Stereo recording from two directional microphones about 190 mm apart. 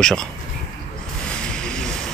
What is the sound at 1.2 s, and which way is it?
Music, 5° left (ahead or behind).